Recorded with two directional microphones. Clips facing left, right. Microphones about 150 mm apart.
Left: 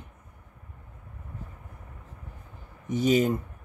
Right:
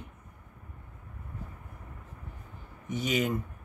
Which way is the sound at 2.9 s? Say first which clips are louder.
Left 6 dB; 35° left (ahead or behind).